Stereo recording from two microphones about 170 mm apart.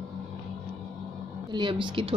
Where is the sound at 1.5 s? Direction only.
30° right (ahead or behind).